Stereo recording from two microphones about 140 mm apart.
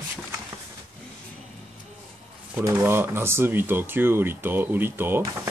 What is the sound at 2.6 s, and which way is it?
Speech, 20° right (ahead or behind).